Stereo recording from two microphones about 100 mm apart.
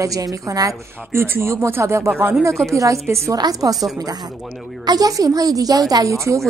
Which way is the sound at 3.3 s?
45° right (ahead or behind).